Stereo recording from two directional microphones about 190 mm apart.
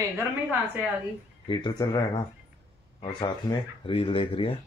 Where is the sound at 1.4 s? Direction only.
25° left (ahead or behind).